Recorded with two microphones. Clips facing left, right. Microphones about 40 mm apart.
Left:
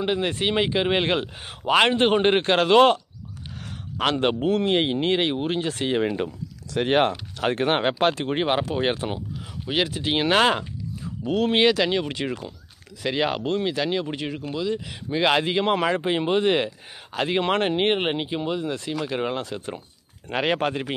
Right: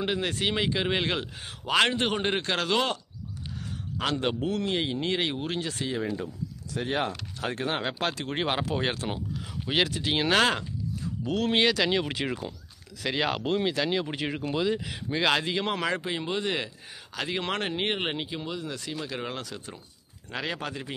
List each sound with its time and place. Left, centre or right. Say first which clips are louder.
0.0 s a man's voice: left 4 dB; centre; by 3.0 s left
4.0 s a man's voice: left 6 dB; left
5.3 s speech: left 6 dB; left
5.7 s speech: left 7 dB; left
7.4 s a man's voice: left 8 dB; left
8.3 s speech: left 5 dB; centre
11.2 s speech: left 5 dB; centre
14.5 s speech: even; centre
14.9 s speech: left 4 dB; centre
15.2 s speech: left 6 dB; centre
16.1 s speech: left 8 dB; left
20.2 s a man's voice: left 9 dB; left